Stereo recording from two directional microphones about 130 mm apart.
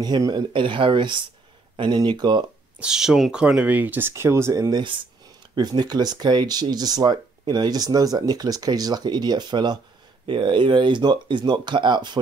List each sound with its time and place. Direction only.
0.0 s speech: 30° right (ahead or behind)
2.8 s speech: 5° right (ahead or behind); by 12.2 s 35° right (ahead or behind)